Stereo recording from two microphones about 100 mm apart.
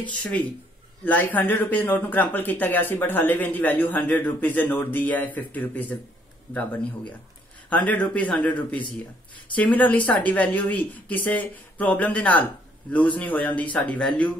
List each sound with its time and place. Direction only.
1.0 s speech: 15° left (ahead or behind)